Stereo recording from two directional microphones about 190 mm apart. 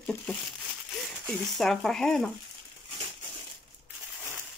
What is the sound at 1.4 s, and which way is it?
Speech, centre (ahead or behind).